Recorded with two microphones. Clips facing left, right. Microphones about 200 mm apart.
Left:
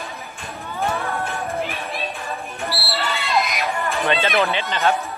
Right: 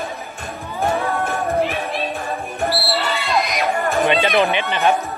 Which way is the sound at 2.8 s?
Centre (ahead or behind).